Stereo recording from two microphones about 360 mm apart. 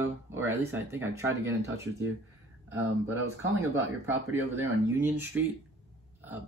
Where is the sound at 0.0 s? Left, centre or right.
Centre.